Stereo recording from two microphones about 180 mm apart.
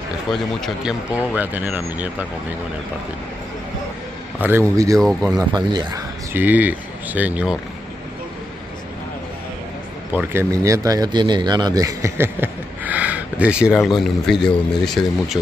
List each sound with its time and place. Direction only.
0.3 s speech: centre (ahead or behind)
4.4 s speech: 15° right (ahead or behind)
4.9 s speech: centre (ahead or behind)
5.3 s speech: 20° right (ahead or behind)
6.3 s speech: 10° right (ahead or behind)
10.1 s speech: 15° right (ahead or behind); by 15.3 s centre (ahead or behind)